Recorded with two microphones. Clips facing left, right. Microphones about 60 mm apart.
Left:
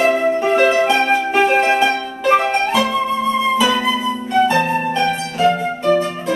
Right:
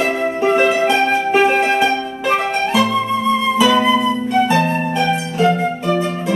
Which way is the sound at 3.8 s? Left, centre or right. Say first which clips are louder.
Right 4 dB; centre.